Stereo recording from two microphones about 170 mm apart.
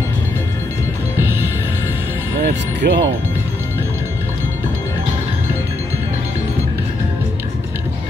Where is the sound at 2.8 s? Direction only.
90° right.